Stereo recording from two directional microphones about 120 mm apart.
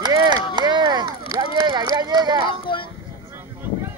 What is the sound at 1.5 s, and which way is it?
Run, 35° right (ahead or behind).